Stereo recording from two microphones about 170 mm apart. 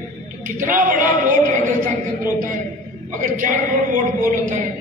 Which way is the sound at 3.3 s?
50° right (ahead or behind).